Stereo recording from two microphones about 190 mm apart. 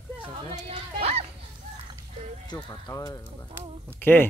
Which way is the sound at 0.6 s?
30° right (ahead or behind).